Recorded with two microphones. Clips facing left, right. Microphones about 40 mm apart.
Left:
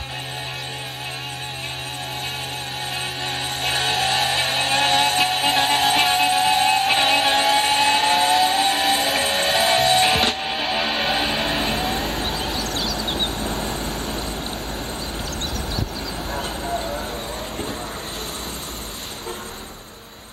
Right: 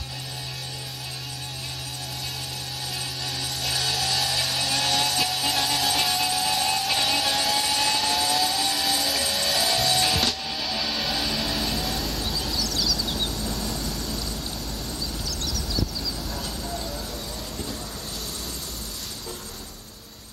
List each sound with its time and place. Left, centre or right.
3.3 s vehicle: left
15.4 s vehicle: left
16.3 s a sound: left